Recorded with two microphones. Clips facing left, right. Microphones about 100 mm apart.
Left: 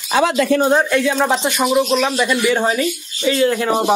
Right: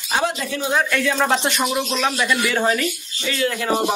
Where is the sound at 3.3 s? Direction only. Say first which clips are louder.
Left 6 dB; 30° left (ahead or behind).